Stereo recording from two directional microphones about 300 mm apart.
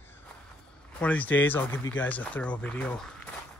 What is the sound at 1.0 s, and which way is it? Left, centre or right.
Speech, centre.